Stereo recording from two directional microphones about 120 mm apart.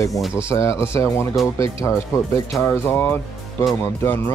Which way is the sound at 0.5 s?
25° left (ahead or behind).